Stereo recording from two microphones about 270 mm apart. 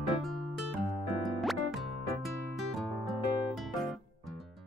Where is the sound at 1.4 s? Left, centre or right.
Centre.